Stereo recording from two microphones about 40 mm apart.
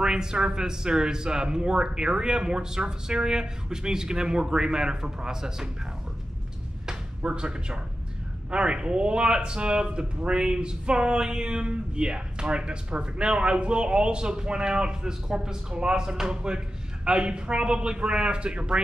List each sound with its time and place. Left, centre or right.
0.0 s speech: centre
7.2 s speech: right